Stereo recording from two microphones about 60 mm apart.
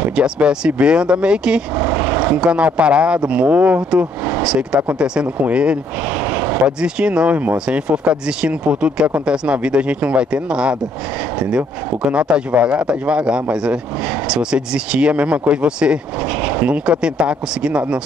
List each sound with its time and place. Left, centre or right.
0.1 s speech: centre
1.8 s a man's voice: right
6.2 s vehicle: right
6.8 s speech: centre
12.1 s a man's voice: centre